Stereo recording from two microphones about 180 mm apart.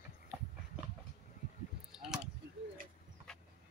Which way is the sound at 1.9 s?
5° right (ahead or behind).